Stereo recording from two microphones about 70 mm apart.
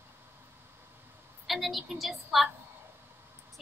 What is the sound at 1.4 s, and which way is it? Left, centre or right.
A woman's voice, centre.